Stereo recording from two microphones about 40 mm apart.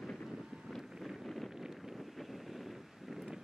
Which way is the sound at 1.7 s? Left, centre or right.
Centre.